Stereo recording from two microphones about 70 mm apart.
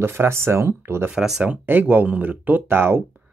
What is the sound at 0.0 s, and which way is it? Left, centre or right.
A woman's voice, right.